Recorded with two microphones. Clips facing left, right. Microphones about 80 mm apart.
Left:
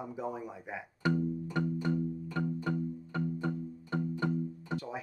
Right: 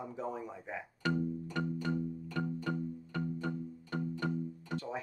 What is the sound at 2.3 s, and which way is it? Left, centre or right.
Music, centre.